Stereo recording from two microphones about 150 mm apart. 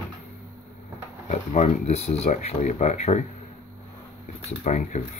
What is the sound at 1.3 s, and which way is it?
Speech, 50° left (ahead or behind).